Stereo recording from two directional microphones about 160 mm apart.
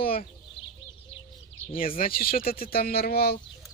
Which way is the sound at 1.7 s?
60° left (ahead or behind).